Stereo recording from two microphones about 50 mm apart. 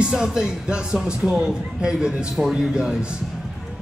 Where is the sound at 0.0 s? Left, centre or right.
Centre.